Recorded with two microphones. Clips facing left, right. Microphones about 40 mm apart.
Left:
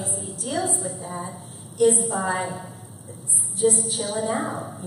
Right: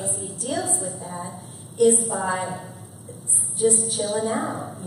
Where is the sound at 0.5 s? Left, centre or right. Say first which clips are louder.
Left 1 dB; left.